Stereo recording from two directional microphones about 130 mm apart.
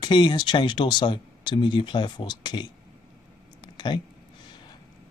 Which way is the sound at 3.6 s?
35° left (ahead or behind).